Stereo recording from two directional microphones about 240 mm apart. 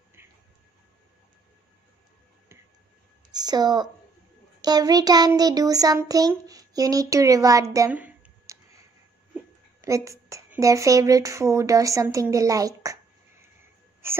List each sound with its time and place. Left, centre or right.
3.3 s a child's voice: centre